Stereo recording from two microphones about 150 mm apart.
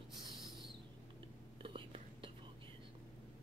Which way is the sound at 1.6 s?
35° right (ahead or behind).